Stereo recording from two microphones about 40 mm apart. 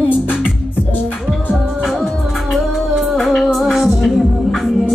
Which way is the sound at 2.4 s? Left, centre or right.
Centre.